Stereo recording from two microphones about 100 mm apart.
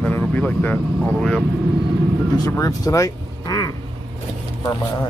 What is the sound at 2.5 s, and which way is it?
Speech, 35° left (ahead or behind).